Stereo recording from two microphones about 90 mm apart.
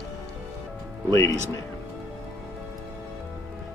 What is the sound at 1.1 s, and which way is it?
Speech, 35° left (ahead or behind).